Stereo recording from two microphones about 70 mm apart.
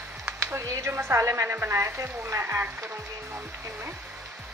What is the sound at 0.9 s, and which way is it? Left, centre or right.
A woman's voice, right.